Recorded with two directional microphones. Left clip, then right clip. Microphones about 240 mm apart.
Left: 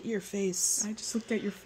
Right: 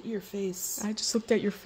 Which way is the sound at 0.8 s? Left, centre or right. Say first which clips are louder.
Right 4 dB; right.